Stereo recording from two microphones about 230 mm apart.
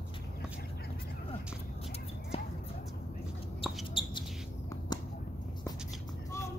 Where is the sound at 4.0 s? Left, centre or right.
Left.